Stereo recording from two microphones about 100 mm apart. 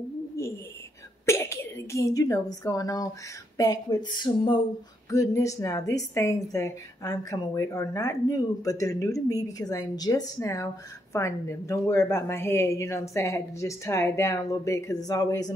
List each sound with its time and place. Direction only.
0.4 s bird: 30° left (ahead or behind)
1.2 s a woman's voice: 30° left (ahead or behind); by 4.6 s 50° left (ahead or behind)
5.1 s a woman's voice: 35° left (ahead or behind)